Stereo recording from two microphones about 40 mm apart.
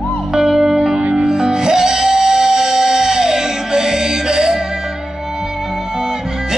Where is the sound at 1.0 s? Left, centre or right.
Right.